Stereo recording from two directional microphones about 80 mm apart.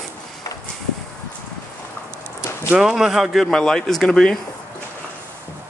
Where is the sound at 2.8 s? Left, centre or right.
Centre.